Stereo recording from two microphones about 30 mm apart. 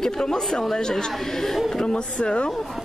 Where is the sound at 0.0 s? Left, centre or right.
Centre.